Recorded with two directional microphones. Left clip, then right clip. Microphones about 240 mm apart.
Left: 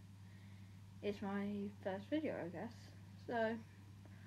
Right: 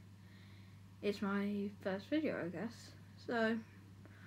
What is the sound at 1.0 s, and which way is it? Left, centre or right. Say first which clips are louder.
Speech: right 5 dB; centre.